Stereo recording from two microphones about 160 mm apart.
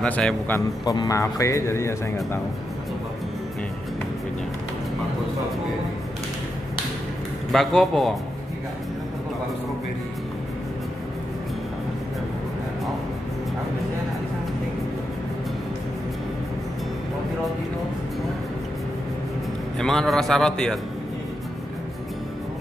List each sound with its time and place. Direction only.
0.0 s a man's voice: 5° left (ahead or behind)
0.8 s speech: 20° left (ahead or behind)
7.5 s a man's voice: centre (ahead or behind)
19.8 s a man's voice: centre (ahead or behind)